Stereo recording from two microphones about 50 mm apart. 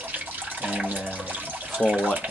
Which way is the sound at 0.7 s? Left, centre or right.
Right.